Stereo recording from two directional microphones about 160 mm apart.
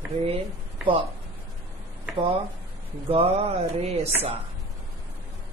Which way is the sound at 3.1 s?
40° right (ahead or behind).